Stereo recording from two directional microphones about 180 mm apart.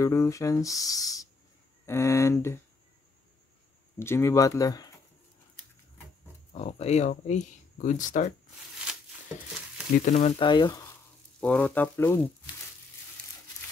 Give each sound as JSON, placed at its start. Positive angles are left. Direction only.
{"t": 0.0, "sound": "speech", "side_deg": 15}
{"t": 4.0, "sound": "speech", "side_deg": 15}
{"t": 6.5, "sound": "speech", "side_deg": 35}
{"t": 10.1, "sound": "speech", "side_deg": 30}
{"t": 11.3, "sound": "speech", "side_deg": 5}